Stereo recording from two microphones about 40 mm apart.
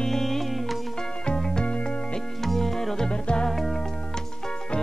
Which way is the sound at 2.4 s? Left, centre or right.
Centre.